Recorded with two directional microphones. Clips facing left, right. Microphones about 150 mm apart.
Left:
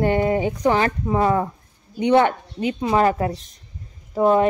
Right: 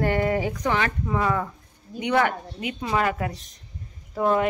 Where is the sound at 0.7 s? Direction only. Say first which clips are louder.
Left 6 dB; 35° left (ahead or behind).